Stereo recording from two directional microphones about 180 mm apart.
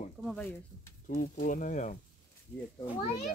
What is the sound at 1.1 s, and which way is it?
Speech, 45° left (ahead or behind).